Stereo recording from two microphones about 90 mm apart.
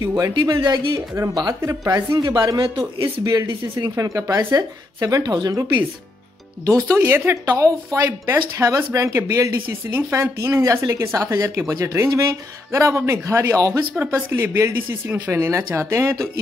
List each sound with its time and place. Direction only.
0.2 s speech: 40° right (ahead or behind)
0.6 s speech: 50° right (ahead or behind)
1.6 s speech: 35° right (ahead or behind)
3.3 s speech: 55° right (ahead or behind)
4.0 s speech: 40° right (ahead or behind)
7.0 s speech: 25° right (ahead or behind)
7.5 s speech: 40° right (ahead or behind)
13.7 s speech: 25° right (ahead or behind)
15.0 s speech: 20° right (ahead or behind)
15.3 s speech: 30° right (ahead or behind)